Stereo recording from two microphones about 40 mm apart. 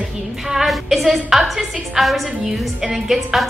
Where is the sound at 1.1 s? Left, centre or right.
Centre.